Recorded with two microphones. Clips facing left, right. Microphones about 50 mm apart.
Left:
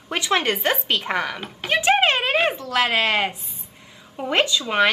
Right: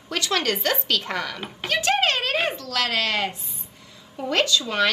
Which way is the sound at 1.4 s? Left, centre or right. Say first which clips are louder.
Left 1 dB; centre.